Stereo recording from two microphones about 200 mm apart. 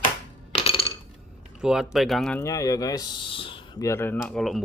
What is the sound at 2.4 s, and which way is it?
Speech, 15° left (ahead or behind).